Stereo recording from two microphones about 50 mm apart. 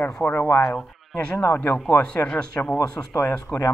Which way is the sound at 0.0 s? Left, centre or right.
Left.